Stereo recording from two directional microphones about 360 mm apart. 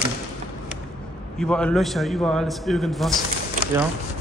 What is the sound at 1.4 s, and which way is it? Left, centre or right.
A man's voice, centre.